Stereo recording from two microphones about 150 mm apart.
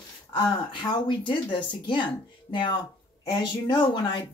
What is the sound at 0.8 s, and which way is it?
Speech, 30° left (ahead or behind).